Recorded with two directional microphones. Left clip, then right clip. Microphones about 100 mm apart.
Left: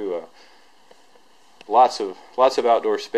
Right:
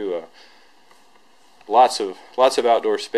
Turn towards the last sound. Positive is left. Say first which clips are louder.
# right 1 dB
turn(degrees=-10)  # may be behind; listen again after turning